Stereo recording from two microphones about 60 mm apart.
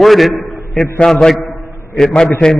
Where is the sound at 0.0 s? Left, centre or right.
Centre.